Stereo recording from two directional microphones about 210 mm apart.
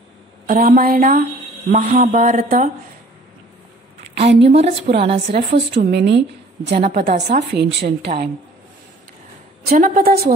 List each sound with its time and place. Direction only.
0.5 s a woman's voice: 40° right (ahead or behind)
4.4 s speech: 30° right (ahead or behind)
5.1 s a woman's voice: 55° right (ahead or behind)
7.2 s speech: 35° right (ahead or behind)
7.5 s a woman's voice: 50° right (ahead or behind)
9.7 s a woman's voice: 40° right (ahead or behind)